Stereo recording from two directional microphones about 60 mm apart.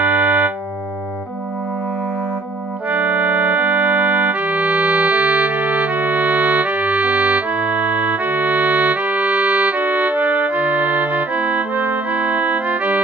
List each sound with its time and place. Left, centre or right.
0.0 s organ: right
2.9 s music: right